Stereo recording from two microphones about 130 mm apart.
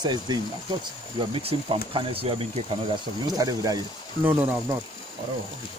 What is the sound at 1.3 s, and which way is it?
Speech, 45° right (ahead or behind).